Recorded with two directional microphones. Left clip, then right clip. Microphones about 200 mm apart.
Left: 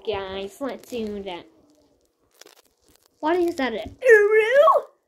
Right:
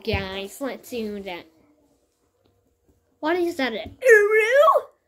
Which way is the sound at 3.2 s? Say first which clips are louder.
Left 1 dB; 10° right (ahead or behind).